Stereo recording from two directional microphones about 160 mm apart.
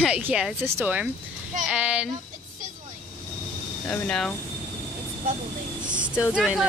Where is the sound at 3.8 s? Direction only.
5° left (ahead or behind).